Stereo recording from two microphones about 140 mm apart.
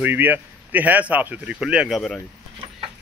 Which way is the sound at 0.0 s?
15° right (ahead or behind).